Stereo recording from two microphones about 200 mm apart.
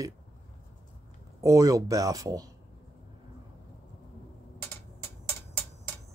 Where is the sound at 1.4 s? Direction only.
15° right (ahead or behind).